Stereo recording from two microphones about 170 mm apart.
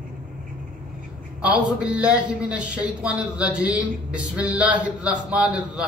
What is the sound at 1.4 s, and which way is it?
A man's voice, 5° right (ahead or behind).